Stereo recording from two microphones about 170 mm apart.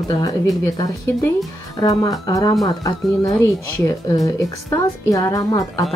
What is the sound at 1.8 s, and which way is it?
A woman's voice, 20° left (ahead or behind).